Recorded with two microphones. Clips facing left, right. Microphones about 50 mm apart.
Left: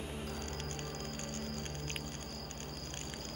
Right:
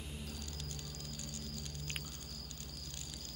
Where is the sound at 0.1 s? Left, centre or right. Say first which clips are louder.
Left 6 dB; left.